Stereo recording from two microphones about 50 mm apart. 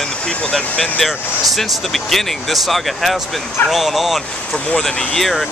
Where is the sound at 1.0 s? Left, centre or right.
Centre.